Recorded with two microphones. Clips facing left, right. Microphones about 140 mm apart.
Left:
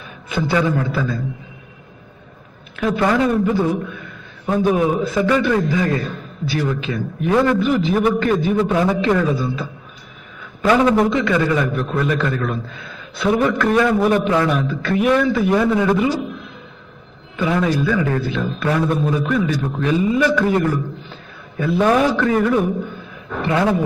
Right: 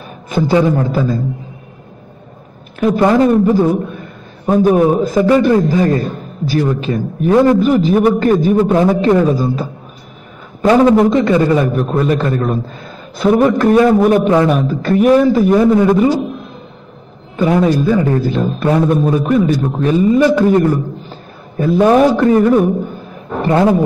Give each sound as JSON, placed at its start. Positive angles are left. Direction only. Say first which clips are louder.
{"t": 0.4, "sound": "a man's voice", "louder": "right 6 dB", "side_deg": -35}
{"t": 2.8, "sound": "a man's voice", "louder": "right 6 dB", "side_deg": -40}
{"t": 17.6, "sound": "a man's voice", "louder": "right 6 dB", "side_deg": -40}
{"t": 20.2, "sound": "a man's voice", "louder": "right 6 dB", "side_deg": -30}
{"t": 20.4, "sound": "a sound", "louder": "right 6 dB", "side_deg": -40}
{"t": 21.9, "sound": "a man's voice", "louder": "right 7 dB", "side_deg": -40}
{"t": 22.7, "sound": "a sound", "louder": "right 6 dB", "side_deg": -40}